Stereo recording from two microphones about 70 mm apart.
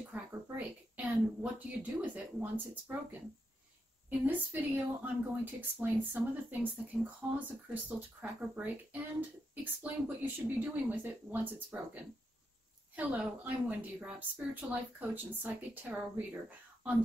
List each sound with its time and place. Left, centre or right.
0.1 s a sound: right
1.8 s speech: right
4.2 s speech: right